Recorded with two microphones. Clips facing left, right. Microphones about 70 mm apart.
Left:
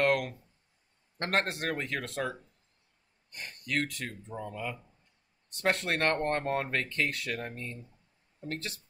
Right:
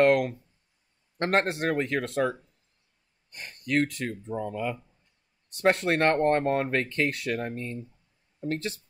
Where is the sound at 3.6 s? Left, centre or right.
Right.